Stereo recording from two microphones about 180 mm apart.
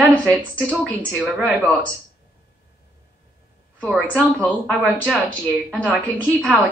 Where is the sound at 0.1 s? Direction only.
5° left (ahead or behind).